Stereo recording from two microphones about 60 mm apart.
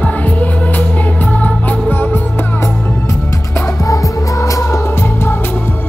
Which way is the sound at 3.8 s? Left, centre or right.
Left.